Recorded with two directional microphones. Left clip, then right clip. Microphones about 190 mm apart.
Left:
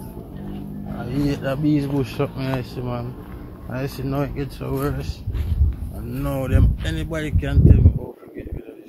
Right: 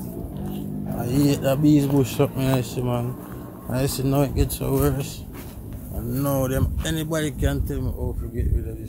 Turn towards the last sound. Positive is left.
turn(degrees=-5)  # may be behind; listen again after turning